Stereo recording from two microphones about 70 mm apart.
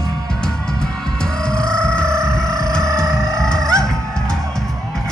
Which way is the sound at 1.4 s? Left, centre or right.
Centre.